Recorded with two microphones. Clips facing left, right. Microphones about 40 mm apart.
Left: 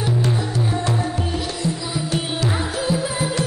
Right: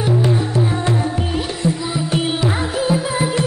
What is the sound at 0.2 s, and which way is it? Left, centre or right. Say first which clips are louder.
Music: right 4 dB; right.